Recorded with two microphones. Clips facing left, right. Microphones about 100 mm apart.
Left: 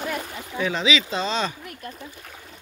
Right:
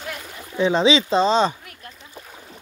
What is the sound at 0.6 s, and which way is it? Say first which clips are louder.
Speech: right 6 dB; 30° right (ahead or behind).